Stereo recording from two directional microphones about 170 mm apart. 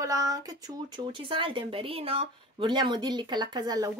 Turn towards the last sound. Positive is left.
turn(degrees=-25)  # may be behind; listen again after turning